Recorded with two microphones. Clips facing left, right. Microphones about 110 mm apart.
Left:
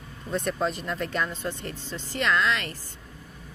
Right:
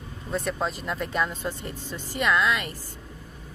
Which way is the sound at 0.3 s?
Centre (ahead or behind).